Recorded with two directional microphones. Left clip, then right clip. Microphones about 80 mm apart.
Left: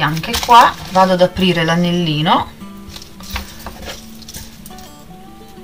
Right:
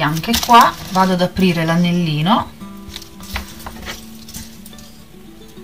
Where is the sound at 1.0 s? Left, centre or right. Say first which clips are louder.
Left 5 dB; left.